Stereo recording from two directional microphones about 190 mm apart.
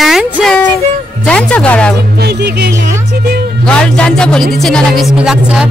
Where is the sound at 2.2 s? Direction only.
60° right (ahead or behind).